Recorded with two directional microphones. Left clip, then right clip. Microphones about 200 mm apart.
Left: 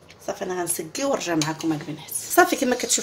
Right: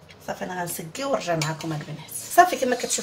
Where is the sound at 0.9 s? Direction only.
50° left (ahead or behind).